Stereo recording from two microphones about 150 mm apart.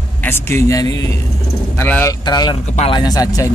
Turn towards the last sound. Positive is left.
turn(degrees=25)  # may be behind; listen again after turning